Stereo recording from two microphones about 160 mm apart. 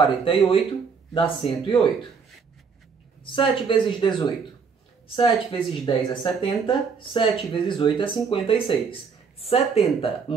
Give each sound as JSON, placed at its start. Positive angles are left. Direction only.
{"t": 0.0, "sound": "speech", "side_deg": 30}
{"t": 3.3, "sound": "speech", "side_deg": 30}
{"t": 5.1, "sound": "speech", "side_deg": 30}